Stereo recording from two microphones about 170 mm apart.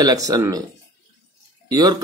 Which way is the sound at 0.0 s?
20° right (ahead or behind).